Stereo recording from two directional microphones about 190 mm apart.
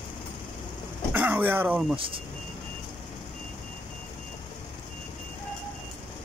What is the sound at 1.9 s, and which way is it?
Speech, 30° right (ahead or behind).